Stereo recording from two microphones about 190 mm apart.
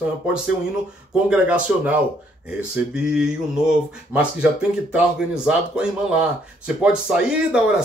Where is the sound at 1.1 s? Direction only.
5° right (ahead or behind).